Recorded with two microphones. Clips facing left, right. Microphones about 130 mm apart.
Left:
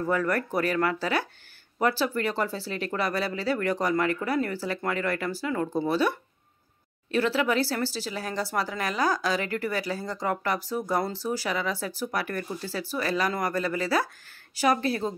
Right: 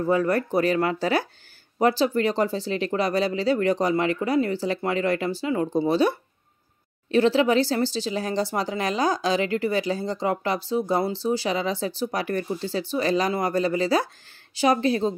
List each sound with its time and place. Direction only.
0.0 s speech: 20° right (ahead or behind)
11.2 s speech: 25° right (ahead or behind)